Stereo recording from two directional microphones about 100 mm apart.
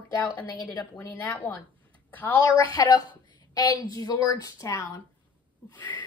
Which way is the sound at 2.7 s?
40° left (ahead or behind).